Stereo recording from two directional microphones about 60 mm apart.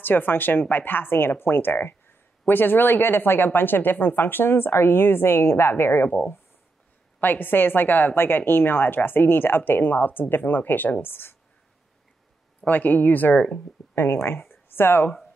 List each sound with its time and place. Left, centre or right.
0.0 s speech: left
7.2 s speech: left
12.6 s speech: left
13.9 s speech: left